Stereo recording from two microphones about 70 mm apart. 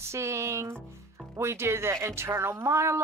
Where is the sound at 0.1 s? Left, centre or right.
Right.